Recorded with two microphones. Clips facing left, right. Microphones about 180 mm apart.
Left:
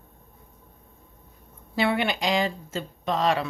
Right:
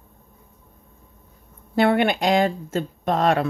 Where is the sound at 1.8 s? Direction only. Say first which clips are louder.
Right 6 dB; 50° right (ahead or behind).